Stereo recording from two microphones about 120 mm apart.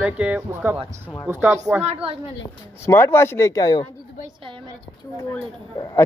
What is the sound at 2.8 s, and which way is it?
Speech, 20° left (ahead or behind).